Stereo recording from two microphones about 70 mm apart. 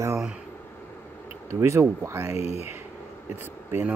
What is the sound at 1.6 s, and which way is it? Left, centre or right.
Speech, right.